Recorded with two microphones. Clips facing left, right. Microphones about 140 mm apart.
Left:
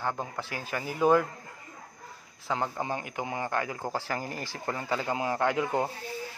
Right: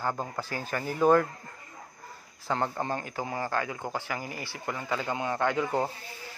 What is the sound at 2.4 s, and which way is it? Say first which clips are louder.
A man's voice: right 1 dB; 5° left (ahead or behind).